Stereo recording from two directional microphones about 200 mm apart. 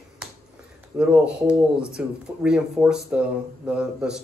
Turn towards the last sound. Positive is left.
turn(degrees=-5)  # may be behind; listen again after turning